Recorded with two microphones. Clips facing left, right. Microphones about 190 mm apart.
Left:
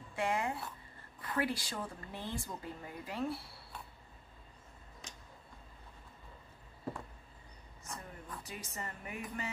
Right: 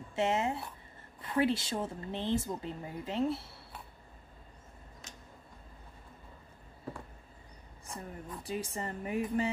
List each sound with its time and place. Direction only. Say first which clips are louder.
0.1 s speech: right 4 dB; 25° right (ahead or behind)
7.8 s speech: right 4 dB; 30° right (ahead or behind)